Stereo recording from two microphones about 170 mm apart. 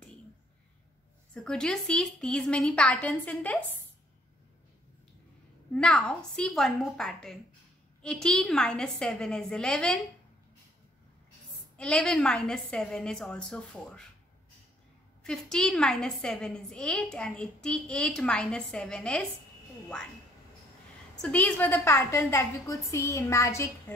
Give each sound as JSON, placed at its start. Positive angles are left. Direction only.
{"t": 1.3, "sound": "a woman's voice", "side_deg": 5}
{"t": 5.7, "sound": "a woman's voice", "side_deg": 5}
{"t": 11.7, "sound": "a woman's voice", "side_deg": 5}
{"t": 15.2, "sound": "a woman's voice", "side_deg": 5}
{"t": 21.2, "sound": "a woman's voice", "side_deg": 5}